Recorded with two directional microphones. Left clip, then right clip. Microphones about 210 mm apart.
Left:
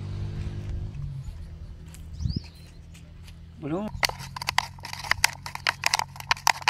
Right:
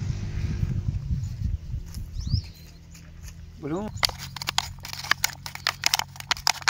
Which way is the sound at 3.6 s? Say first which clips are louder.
Even; 10° left (ahead or behind).